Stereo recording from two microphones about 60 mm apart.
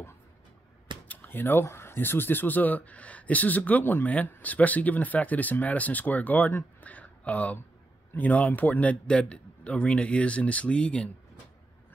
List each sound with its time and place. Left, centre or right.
1.0 s speech: left
6.8 s a sound: left
8.1 s speech: left